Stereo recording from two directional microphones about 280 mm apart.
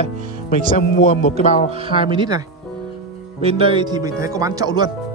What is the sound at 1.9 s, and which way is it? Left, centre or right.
Speech, centre.